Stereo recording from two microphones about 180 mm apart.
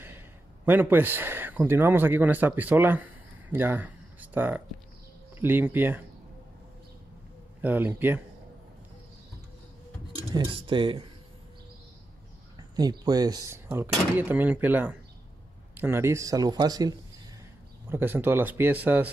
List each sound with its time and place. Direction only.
0.7 s speech: 10° right (ahead or behind)
7.6 s speech: 10° right (ahead or behind)
10.3 s speech: 30° right (ahead or behind)
12.5 s speech: 20° right (ahead or behind)